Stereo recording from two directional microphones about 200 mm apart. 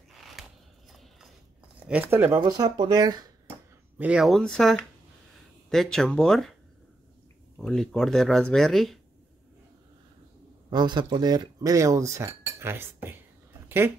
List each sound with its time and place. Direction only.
0.2 s a sound: centre (ahead or behind)
1.8 s speech: 5° right (ahead or behind)
4.0 s speech: 5° right (ahead or behind)
7.5 s speech: 5° left (ahead or behind)
10.7 s speech: 20° right (ahead or behind)